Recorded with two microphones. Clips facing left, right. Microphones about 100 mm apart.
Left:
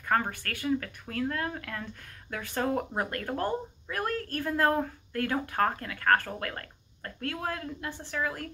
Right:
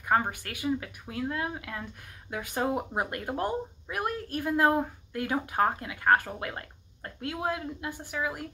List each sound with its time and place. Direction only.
0.1 s speech: 15° right (ahead or behind)